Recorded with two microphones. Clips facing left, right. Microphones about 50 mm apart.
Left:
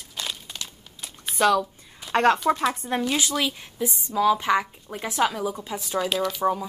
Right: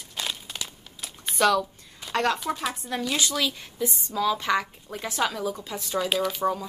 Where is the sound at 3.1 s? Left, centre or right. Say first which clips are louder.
Left 2 dB; centre.